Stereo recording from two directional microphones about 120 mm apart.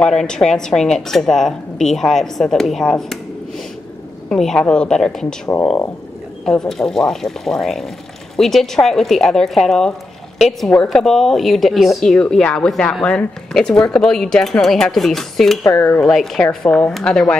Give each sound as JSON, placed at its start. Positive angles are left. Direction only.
{"t": 0.0, "sound": "a woman's voice", "side_deg": 5}
{"t": 6.4, "sound": "a woman's voice", "side_deg": 5}
{"t": 15.6, "sound": "speech", "side_deg": 20}
{"t": 16.0, "sound": "a woman's voice", "side_deg": 0}